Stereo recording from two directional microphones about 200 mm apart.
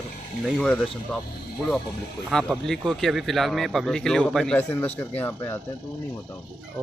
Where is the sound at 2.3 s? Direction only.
5° left (ahead or behind).